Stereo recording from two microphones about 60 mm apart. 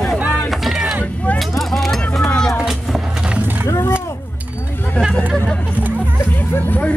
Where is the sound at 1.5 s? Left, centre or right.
Centre.